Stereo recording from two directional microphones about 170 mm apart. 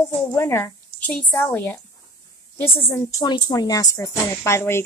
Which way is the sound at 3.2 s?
25° left (ahead or behind).